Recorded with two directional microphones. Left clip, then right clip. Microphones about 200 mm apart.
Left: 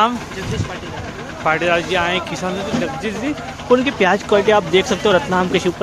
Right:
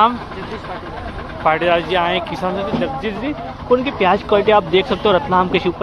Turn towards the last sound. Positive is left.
turn(degrees=20)  # may be behind; listen again after turning